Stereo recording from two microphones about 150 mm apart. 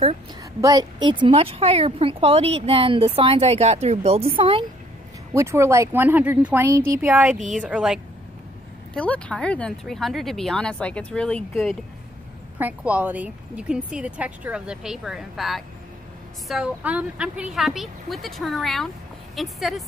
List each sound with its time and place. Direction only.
0.6 s a woman's voice: 25° right (ahead or behind)
5.3 s speech: 20° right (ahead or behind)
7.3 s speech: 55° right (ahead or behind)
7.6 s speech: 5° right (ahead or behind)
8.9 s speech: 10° left (ahead or behind)
12.5 s speech: 10° right (ahead or behind)